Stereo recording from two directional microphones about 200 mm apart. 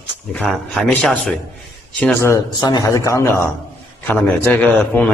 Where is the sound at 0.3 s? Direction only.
5° left (ahead or behind).